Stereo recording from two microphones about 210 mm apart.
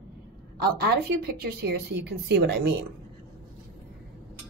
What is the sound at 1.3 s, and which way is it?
Speech, 50° right (ahead or behind).